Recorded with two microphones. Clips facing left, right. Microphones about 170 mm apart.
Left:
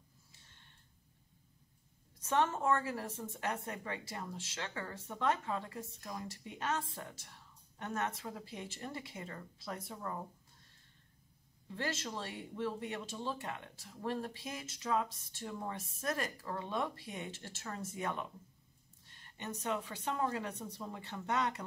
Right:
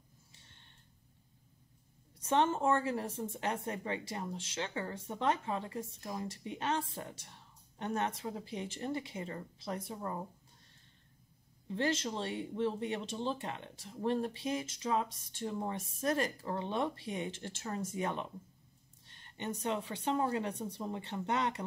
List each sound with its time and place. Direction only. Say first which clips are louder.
2.2 s speech: right 2 dB; 25° right (ahead or behind)
11.6 s speech: right 6 dB; 25° right (ahead or behind)